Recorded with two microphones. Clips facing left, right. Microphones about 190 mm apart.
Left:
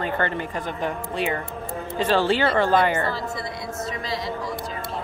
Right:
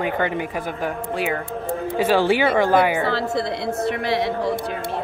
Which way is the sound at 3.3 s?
70° right (ahead or behind).